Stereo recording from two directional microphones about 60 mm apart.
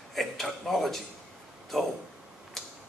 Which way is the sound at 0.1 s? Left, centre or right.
Centre.